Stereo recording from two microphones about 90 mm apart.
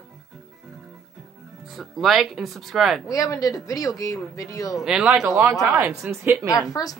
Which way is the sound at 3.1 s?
40° left (ahead or behind).